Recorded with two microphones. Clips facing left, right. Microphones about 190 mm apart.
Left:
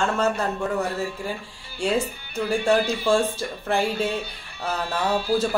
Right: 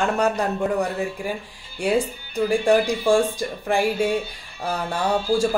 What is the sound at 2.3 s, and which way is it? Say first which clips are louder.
Speech: right 3 dB; 15° right (ahead or behind).